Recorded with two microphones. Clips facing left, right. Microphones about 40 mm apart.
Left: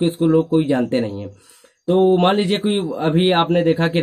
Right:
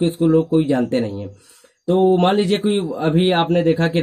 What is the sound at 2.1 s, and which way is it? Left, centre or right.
A man's voice, left.